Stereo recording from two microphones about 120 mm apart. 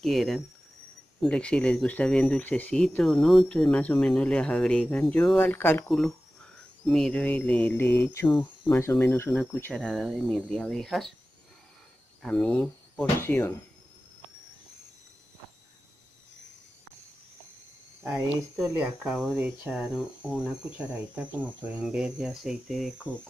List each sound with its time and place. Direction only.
0.0 s speech: centre (ahead or behind)
5.4 s speech: 15° left (ahead or behind)
5.9 s speech: 5° left (ahead or behind)
9.8 s speech: 5° left (ahead or behind)
12.2 s speech: 5° left (ahead or behind)
13.2 s speech: 20° left (ahead or behind)
18.8 s speech: centre (ahead or behind)